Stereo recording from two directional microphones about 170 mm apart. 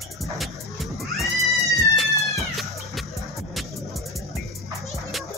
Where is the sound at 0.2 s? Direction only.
Centre (ahead or behind).